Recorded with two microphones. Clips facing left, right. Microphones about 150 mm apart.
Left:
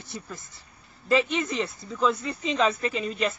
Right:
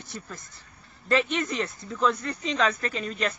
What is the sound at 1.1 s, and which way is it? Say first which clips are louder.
Speech: left 1 dB; 5° left (ahead or behind).